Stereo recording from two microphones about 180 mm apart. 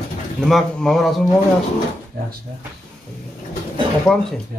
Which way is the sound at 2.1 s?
55° right (ahead or behind).